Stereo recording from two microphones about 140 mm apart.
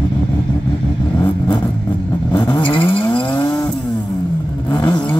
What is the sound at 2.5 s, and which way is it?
Vehicle, 40° left (ahead or behind).